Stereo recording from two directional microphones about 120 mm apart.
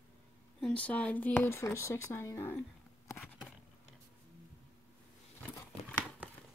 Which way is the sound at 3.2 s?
Centre (ahead or behind).